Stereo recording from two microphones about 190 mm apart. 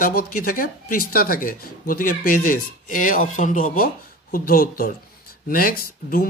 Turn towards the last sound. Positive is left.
turn(degrees=50)  # may be behind; listen again after turning